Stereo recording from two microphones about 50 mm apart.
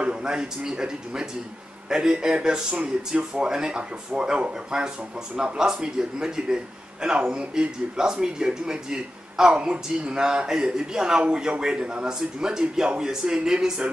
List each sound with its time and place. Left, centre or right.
0.0 s a man's voice: centre